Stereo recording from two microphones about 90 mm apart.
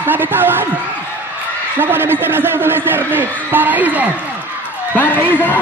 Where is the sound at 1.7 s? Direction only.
25° right (ahead or behind).